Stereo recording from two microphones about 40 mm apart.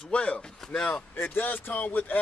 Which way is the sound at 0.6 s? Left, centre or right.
Centre.